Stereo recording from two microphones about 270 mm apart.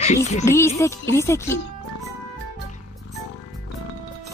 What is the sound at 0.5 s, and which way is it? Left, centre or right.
Music, centre.